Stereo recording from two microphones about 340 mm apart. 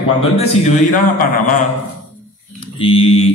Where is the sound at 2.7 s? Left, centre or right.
Centre.